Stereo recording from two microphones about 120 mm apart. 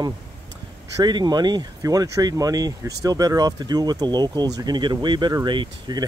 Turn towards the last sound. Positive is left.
turn(degrees=-40)  # may be behind; listen again after turning